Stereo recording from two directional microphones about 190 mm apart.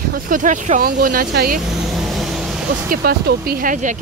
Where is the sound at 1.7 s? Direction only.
Centre (ahead or behind).